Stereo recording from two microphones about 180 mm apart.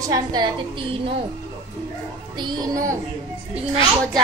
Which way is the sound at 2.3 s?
25° right (ahead or behind).